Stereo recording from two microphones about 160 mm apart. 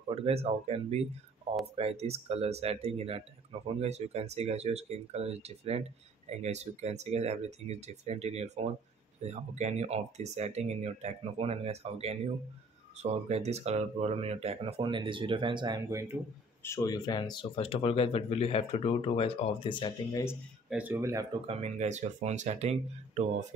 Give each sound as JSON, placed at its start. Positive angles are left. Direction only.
{"t": 0.1, "sound": "speech", "side_deg": -40}
{"t": 16.6, "sound": "speech", "side_deg": 20}
{"t": 20.7, "sound": "speech", "side_deg": -15}
{"t": 21.5, "sound": "speech", "side_deg": -40}